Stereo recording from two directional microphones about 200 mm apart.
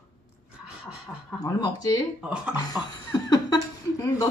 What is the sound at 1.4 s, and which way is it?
Speech, 20° left (ahead or behind).